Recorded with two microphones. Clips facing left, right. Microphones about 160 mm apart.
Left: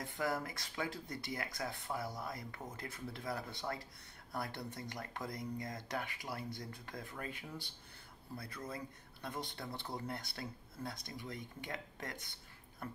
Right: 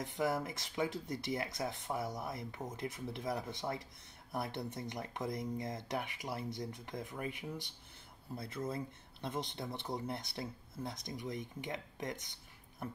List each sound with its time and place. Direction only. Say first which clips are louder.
0.0 s speech: right 3 dB; 20° right (ahead or behind)